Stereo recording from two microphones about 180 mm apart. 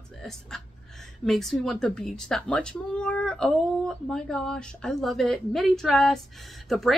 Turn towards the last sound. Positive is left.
turn(degrees=0)  # may be behind; listen again after turning